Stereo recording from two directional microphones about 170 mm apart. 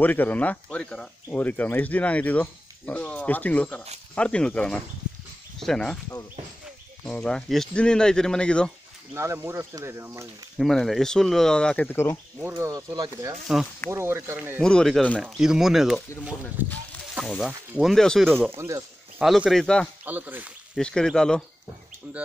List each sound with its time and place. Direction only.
0.0 s speech: 10° left (ahead or behind)
7.1 s speech: 5° left (ahead or behind)
9.1 s speech: 15° right (ahead or behind)
10.6 s speech: centre (ahead or behind)
12.4 s speech: 15° right (ahead or behind)
13.3 s speech: centre (ahead or behind)
13.8 s speech: 15° right (ahead or behind)
14.6 s speech: 5° left (ahead or behind); by 16.7 s 10° right (ahead or behind)
17.1 s speech: centre (ahead or behind)
18.6 s speech: 15° right (ahead or behind)
19.2 s speech: centre (ahead or behind)
20.1 s speech: 10° right (ahead or behind)
20.7 s speech: 5° left (ahead or behind)